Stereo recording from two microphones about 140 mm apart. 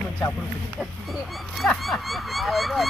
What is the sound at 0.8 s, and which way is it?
Speech, centre (ahead or behind).